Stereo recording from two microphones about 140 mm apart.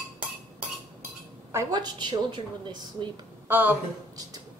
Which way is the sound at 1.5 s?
25° right (ahead or behind).